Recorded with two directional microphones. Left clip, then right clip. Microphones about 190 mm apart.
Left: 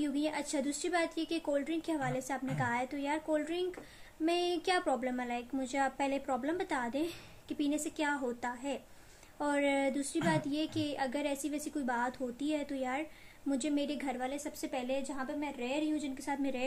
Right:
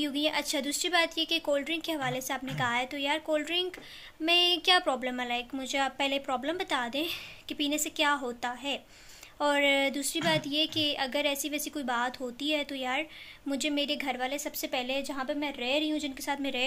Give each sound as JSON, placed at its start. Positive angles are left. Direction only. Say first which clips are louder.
{"t": 0.0, "sound": "a woman's voice", "louder": "right 5 dB", "side_deg": 0}
{"t": 15.1, "sound": "a woman's voice", "louder": "right 6 dB", "side_deg": -25}
{"t": 16.3, "sound": "a woman's voice", "louder": "right 5 dB", "side_deg": 0}